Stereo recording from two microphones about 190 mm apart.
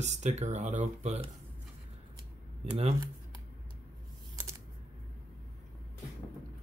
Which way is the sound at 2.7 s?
30° right (ahead or behind).